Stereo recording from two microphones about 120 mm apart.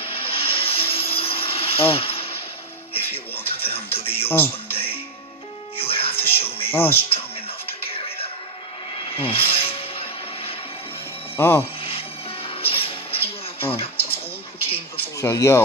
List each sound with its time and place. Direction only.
0.0 s a sound: 50° left (ahead or behind)
3.5 s music: 55° left (ahead or behind)
4.3 s music: 15° left (ahead or behind)
5.8 s music: 50° left (ahead or behind)
6.7 s speech: 20° left (ahead or behind)
7.1 s music: 55° left (ahead or behind)
11.3 s speech: 20° left (ahead or behind)
12.4 s a sound: 50° left (ahead or behind)
15.1 s speech: 25° left (ahead or behind)